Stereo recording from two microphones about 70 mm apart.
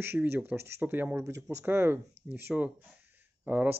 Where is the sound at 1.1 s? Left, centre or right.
Right.